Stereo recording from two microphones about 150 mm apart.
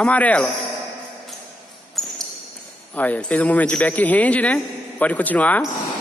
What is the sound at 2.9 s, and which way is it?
A man's voice, 10° left (ahead or behind).